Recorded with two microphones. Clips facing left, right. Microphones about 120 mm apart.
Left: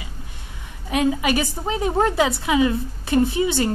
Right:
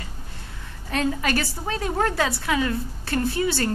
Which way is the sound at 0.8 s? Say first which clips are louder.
Left 4 dB; 10° left (ahead or behind).